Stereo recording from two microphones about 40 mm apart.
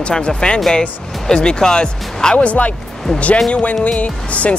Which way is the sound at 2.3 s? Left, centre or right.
Left.